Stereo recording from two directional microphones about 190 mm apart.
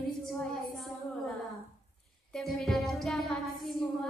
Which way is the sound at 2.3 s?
Centre (ahead or behind).